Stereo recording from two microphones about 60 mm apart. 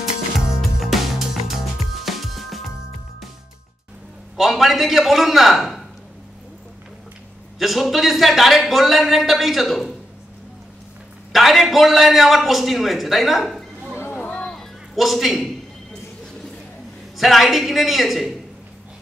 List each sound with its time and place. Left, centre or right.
0.6 s music: centre
4.4 s a man's voice: centre
7.5 s speech: centre
11.3 s a man's voice: centre
14.3 s music: centre
14.6 s a sound: centre
17.2 s speech: centre